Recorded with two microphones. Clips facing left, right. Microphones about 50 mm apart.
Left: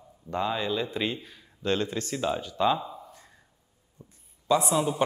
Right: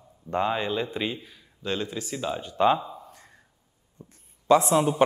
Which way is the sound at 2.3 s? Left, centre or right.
Right.